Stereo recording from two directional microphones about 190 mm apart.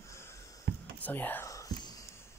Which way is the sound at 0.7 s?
60° right (ahead or behind).